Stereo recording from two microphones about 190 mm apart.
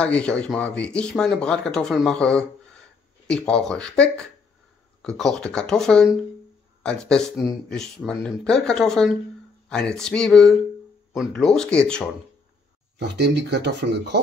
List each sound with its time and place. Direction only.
0.0 s speech: 5° left (ahead or behind)
13.2 s speech: 65° right (ahead or behind)